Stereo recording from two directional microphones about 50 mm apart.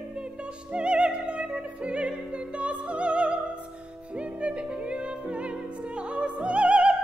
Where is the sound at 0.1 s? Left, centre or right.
Right.